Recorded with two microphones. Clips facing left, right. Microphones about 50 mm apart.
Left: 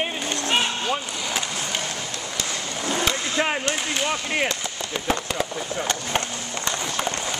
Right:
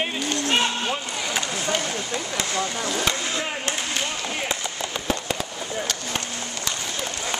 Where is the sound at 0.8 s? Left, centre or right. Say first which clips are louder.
Left 1 dB; centre.